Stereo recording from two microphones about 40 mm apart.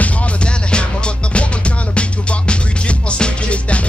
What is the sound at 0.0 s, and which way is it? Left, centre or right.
Music, left.